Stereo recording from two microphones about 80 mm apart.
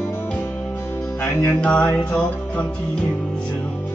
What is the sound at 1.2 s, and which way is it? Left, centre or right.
Music, left.